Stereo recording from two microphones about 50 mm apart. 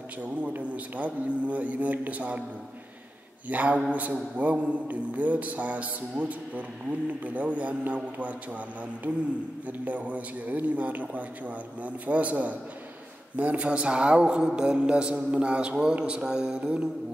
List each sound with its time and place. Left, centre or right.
0.2 s speech: right
3.4 s a man's voice: right
9.7 s a man's voice: right